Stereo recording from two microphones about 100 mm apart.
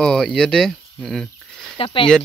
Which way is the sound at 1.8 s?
60° left (ahead or behind).